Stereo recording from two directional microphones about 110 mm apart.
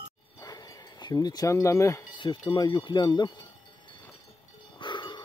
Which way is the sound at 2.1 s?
45° left (ahead or behind).